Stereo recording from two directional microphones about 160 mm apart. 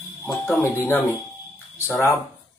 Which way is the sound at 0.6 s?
15° left (ahead or behind).